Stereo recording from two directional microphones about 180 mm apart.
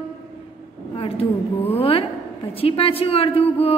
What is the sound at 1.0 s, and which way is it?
A woman's voice, 30° left (ahead or behind).